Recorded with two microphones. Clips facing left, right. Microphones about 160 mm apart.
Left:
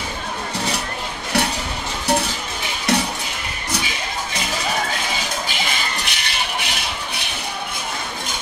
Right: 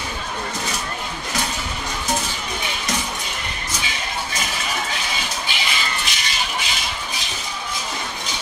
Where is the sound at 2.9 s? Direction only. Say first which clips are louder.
Left 8 dB; 65° left (ahead or behind).